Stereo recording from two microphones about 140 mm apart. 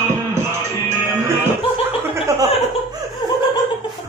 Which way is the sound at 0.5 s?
15° right (ahead or behind).